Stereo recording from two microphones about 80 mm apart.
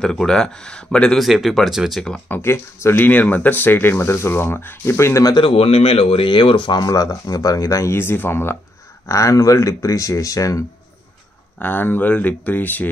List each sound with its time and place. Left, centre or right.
0.0 s speech: centre
1.2 s speech: centre
2.2 s speech: left
6.2 s speech: left
6.9 s speech: left
9.0 s speech: left
11.6 s speech: left